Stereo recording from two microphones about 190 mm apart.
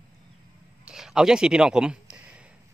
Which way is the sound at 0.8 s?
5° right (ahead or behind).